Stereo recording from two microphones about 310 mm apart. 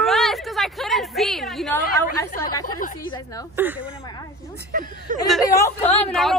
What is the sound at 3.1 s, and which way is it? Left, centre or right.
Speech, centre.